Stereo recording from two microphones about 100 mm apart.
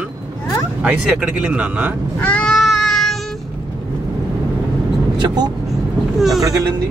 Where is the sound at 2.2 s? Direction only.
15° left (ahead or behind).